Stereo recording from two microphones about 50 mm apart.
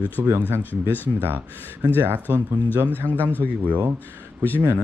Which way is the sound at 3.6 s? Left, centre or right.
Right.